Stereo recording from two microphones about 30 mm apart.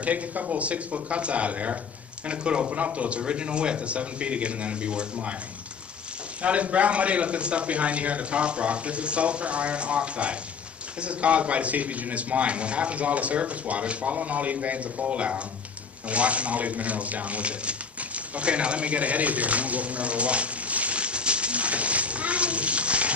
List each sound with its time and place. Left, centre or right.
0.0 s speech: right
0.6 s a man's voice: right
2.2 s a man's voice: right
2.7 s a man's voice: right
6.4 s a man's voice: right
16.1 s a sound: right